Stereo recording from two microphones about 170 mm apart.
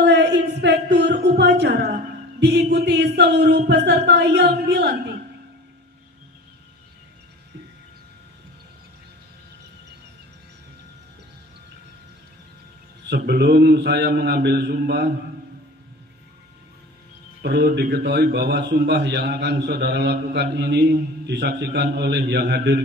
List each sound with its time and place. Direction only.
0.0 s a sound: 90° right
2.4 s speech: 80° right
13.1 s a man's voice: 75° right (ahead or behind)
17.4 s a man's voice: 70° right (ahead or behind)